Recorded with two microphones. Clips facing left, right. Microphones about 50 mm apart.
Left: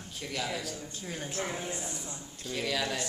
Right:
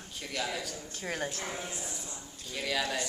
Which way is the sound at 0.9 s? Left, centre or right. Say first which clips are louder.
Right 4 dB; right.